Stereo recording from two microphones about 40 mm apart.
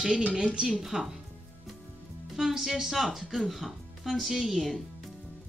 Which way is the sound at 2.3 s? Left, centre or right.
Centre.